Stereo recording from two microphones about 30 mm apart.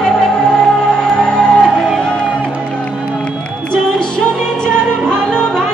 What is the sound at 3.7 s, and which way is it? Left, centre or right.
Music, left.